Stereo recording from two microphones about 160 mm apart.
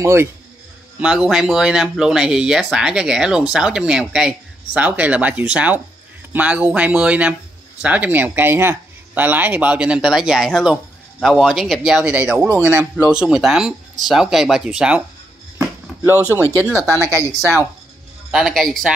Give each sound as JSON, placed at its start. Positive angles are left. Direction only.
{"t": 0.0, "sound": "speech", "side_deg": -15}
{"t": 0.9, "sound": "speech", "side_deg": -5}
{"t": 16.1, "sound": "speech", "side_deg": 15}
{"t": 17.0, "sound": "speech", "side_deg": -20}
{"t": 18.3, "sound": "speech", "side_deg": 0}